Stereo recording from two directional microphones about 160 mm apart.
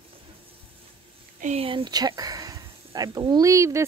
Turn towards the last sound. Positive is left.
turn(degrees=-20)  # may be behind; listen again after turning